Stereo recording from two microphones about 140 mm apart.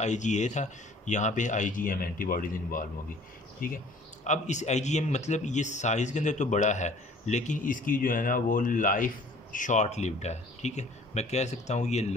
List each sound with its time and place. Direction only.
0.0 s a man's voice: 60° left (ahead or behind); by 2.8 s 85° left
3.6 s a man's voice: 70° left (ahead or behind); by 12.1 s 55° left (ahead or behind)